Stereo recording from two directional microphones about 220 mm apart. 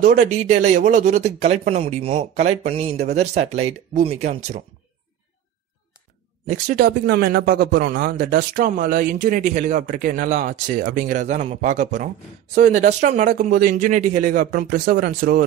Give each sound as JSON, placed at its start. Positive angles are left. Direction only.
{"t": 0.0, "sound": "speech", "side_deg": -35}
{"t": 6.5, "sound": "speech", "side_deg": -35}